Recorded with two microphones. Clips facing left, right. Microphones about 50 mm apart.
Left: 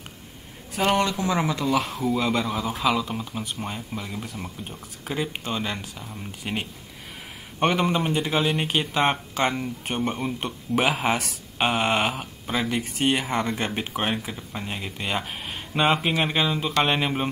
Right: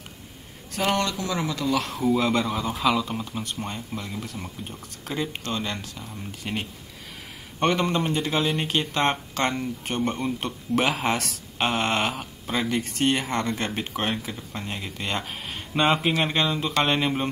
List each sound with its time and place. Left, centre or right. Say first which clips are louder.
0.7 s speech: left 2 dB; centre
1.6 s speech: left 1 dB; centre